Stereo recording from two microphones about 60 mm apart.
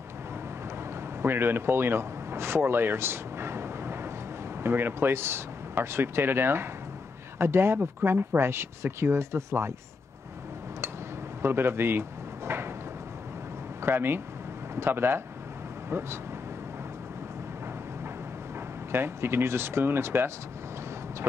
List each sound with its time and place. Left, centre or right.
1.2 s speech: right
11.4 s speech: right
13.7 s speech: right
18.9 s speech: right